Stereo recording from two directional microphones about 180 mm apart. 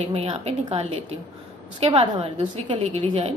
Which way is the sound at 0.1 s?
35° right (ahead or behind).